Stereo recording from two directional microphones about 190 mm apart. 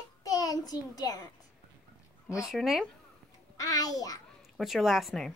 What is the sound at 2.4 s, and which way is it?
Speech, centre (ahead or behind).